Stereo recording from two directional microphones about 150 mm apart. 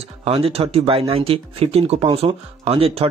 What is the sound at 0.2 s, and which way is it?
Speech, 40° right (ahead or behind).